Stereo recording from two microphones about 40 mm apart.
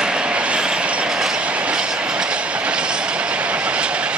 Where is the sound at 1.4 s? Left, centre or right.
Right.